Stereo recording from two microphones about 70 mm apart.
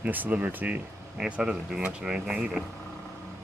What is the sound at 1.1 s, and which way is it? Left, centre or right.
Speech, centre.